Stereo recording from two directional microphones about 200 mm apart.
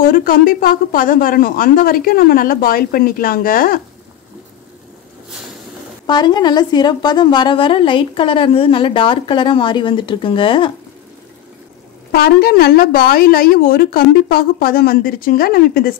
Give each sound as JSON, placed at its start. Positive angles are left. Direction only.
{"t": 0.0, "sound": "speech", "side_deg": 45}
{"t": 6.0, "sound": "a woman's voice", "side_deg": 20}
{"t": 12.1, "sound": "speech", "side_deg": 50}